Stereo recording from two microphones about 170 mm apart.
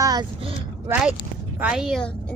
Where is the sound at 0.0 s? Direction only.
25° right (ahead or behind).